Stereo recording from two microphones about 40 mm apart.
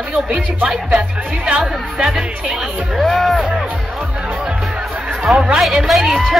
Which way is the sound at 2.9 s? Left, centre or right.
Centre.